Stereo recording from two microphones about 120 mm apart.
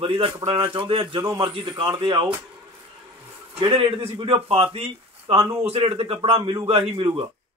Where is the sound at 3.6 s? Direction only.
45° right (ahead or behind).